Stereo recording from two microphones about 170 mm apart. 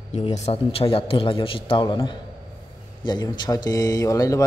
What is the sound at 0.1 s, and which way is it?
A man's voice, 35° left (ahead or behind).